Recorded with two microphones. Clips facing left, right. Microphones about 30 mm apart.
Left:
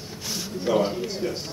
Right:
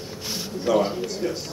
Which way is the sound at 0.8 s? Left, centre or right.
Centre.